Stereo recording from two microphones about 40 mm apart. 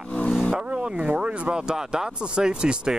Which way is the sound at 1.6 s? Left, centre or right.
Centre.